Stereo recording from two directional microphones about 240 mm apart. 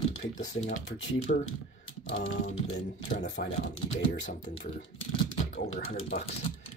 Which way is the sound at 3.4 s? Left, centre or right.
Left.